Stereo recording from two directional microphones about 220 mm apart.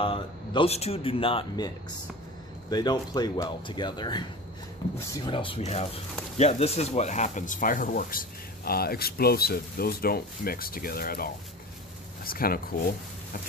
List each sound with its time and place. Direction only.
0.0 s speech: 25° left (ahead or behind)
2.7 s speech: 20° left (ahead or behind); by 11.2 s 40° left (ahead or behind)
12.3 s speech: 40° left (ahead or behind)